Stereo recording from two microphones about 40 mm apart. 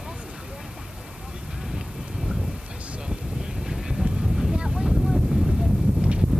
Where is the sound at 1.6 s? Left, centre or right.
Centre.